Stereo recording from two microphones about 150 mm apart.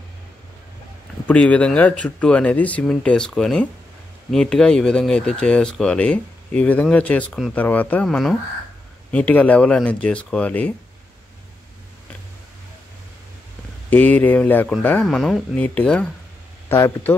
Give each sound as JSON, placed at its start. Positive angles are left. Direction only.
{"t": 1.2, "sound": "speech", "side_deg": 10}
{"t": 13.8, "sound": "speech", "side_deg": 10}